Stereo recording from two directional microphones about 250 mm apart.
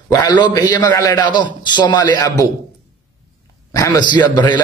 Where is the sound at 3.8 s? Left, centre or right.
Centre.